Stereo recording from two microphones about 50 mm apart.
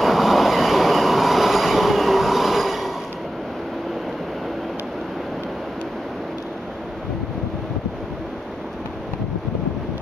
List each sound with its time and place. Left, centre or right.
0.0 s train: centre